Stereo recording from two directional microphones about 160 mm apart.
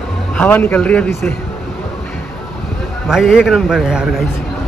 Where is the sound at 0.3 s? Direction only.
10° left (ahead or behind).